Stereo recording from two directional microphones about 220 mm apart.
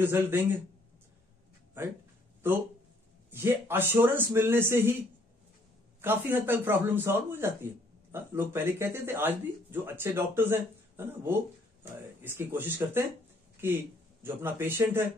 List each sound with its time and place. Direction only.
0.0 s a man's voice: 10° right (ahead or behind)
1.8 s a man's voice: 10° right (ahead or behind)
5.9 s a man's voice: 10° right (ahead or behind)
14.2 s a man's voice: 10° right (ahead or behind)